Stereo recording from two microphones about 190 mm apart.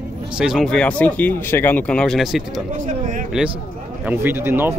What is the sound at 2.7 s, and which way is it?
Speech, 45° right (ahead or behind).